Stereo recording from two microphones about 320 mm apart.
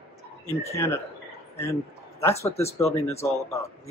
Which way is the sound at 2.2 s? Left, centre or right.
Centre.